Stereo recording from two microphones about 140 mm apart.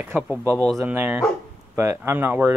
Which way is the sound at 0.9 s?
15° right (ahead or behind).